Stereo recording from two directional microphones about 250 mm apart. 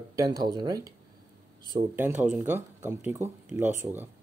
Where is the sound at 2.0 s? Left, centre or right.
Centre.